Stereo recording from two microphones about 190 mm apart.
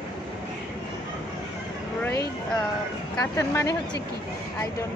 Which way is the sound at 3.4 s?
15° left (ahead or behind).